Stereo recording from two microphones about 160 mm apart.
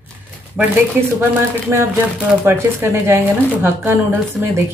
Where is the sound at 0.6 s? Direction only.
5° right (ahead or behind).